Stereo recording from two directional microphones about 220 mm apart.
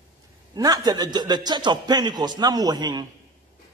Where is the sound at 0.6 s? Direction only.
15° right (ahead or behind).